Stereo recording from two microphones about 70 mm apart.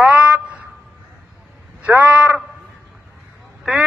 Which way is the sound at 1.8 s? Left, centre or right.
Right.